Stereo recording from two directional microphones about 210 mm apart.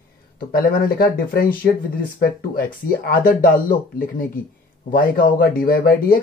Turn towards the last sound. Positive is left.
turn(degrees=45)  # may be behind; listen again after turning